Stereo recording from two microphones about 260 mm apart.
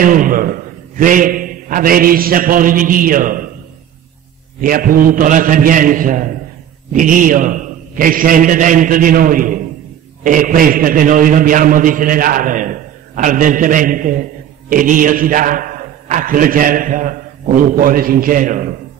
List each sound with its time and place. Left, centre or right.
0.0 s a man's voice: right
4.6 s a man's voice: right